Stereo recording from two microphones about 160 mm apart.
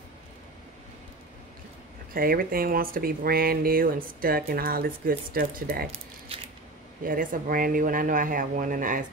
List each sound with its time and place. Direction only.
2.1 s speech: 65° right (ahead or behind)
5.9 s a sound: 35° right (ahead or behind)
7.1 s speech: 60° right (ahead or behind)